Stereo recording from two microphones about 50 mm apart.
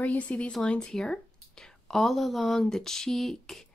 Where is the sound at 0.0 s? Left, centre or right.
Left.